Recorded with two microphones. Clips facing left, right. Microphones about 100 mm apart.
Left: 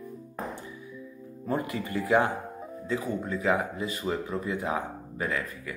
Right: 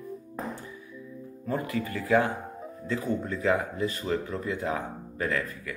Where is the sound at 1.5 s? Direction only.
25° left (ahead or behind).